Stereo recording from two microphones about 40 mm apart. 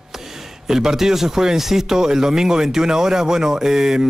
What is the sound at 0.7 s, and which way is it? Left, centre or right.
Speech, centre.